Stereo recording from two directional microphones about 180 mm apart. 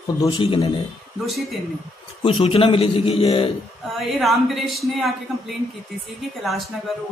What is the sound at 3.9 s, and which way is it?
Speech, centre (ahead or behind).